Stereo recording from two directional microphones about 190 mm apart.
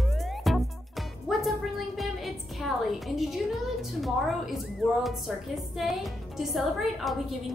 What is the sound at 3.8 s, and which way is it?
A woman's voice, centre (ahead or behind).